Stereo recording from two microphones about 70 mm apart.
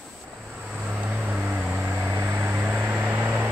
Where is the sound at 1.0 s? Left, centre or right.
Centre.